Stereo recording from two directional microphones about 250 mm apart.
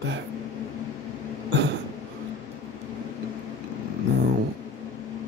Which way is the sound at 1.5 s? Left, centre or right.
Right.